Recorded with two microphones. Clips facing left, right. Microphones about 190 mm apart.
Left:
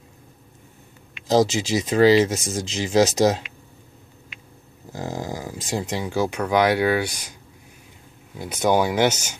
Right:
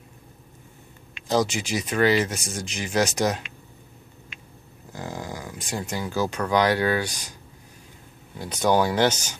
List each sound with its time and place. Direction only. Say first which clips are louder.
1.3 s speech: left 5 dB; 25° left (ahead or behind)
4.9 s dog: left 4 dB; 25° left (ahead or behind)
5.7 s speech: left 4 dB; 25° left (ahead or behind)
6.0 s speech: left 1 dB; 10° left (ahead or behind)
8.4 s speech: left 1 dB; 10° left (ahead or behind)